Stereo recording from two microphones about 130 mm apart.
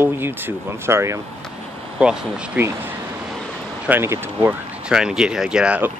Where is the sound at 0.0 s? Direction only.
15° right (ahead or behind).